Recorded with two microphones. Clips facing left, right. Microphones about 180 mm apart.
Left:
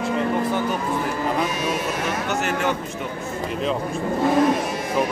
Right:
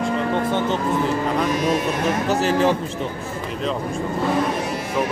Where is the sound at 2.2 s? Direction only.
30° right (ahead or behind).